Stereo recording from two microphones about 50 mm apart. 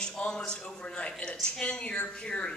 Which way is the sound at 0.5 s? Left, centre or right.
Centre.